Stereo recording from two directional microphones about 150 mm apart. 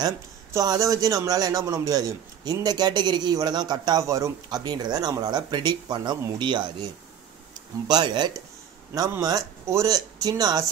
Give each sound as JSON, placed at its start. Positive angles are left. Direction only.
{"t": 0.0, "sound": "speech", "side_deg": -25}
{"t": 7.9, "sound": "speech", "side_deg": -30}